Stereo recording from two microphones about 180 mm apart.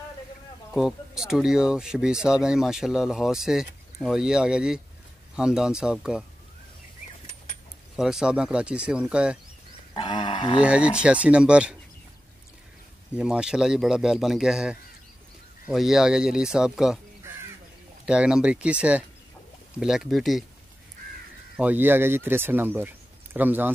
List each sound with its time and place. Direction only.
0.7 s speech: centre (ahead or behind)
7.9 s speech: 5° right (ahead or behind)
9.9 s a sound: 25° left (ahead or behind)
10.6 s speech: 5° right (ahead or behind)
13.1 s speech: 5° right (ahead or behind)
18.0 s speech: 5° right (ahead or behind)
21.5 s speech: 10° right (ahead or behind)